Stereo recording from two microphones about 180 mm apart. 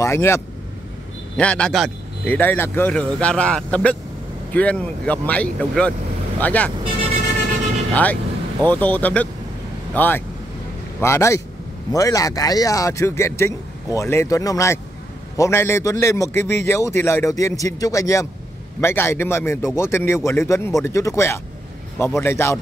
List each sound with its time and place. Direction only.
0.0 s speech: 15° left (ahead or behind)
7.9 s speech: 10° left (ahead or behind)